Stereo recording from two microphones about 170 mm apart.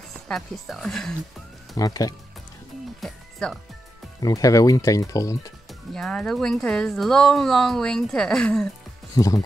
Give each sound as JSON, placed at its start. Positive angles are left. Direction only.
{"t": 0.3, "sound": "speech", "side_deg": 0}
{"t": 1.8, "sound": "speech", "side_deg": 20}
{"t": 3.0, "sound": "speech", "side_deg": 5}
{"t": 4.2, "sound": "speech", "side_deg": 20}
{"t": 5.7, "sound": "speech", "side_deg": 5}
{"t": 9.1, "sound": "speech", "side_deg": 20}